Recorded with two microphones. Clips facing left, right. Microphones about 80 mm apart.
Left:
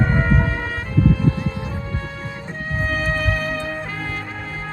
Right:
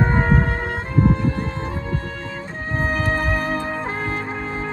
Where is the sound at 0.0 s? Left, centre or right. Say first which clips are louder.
Right 1 dB; right.